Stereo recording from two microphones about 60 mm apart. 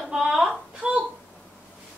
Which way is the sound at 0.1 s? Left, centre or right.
Centre.